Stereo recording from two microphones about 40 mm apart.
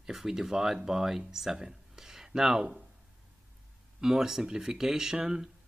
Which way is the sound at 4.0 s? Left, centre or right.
Centre.